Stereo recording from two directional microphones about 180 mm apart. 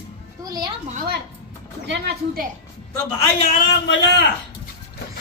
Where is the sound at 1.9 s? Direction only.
70° right (ahead or behind).